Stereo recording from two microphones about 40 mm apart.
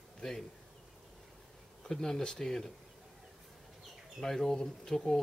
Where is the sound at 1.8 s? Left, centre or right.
Centre.